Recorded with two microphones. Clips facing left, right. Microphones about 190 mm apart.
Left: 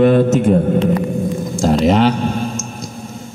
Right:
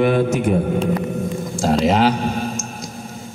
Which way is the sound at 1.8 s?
5° right (ahead or behind).